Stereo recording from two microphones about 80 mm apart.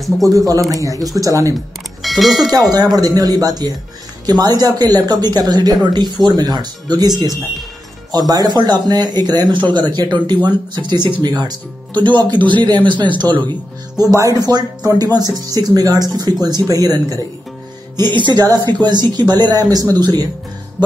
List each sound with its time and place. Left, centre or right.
0.2 s speech: right
2.0 s speech: centre
2.7 s speech: right
13.9 s speech: right
17.9 s speech: right